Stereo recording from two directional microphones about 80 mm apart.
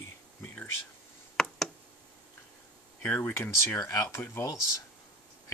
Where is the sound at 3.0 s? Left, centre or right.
Left.